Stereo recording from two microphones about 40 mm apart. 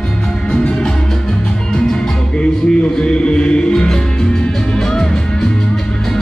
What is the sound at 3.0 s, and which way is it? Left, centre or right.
Music, left.